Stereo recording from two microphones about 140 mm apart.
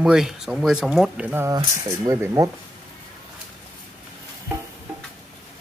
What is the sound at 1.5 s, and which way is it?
Speech, 25° right (ahead or behind).